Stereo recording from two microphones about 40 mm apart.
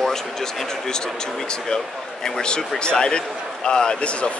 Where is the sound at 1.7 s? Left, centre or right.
Centre.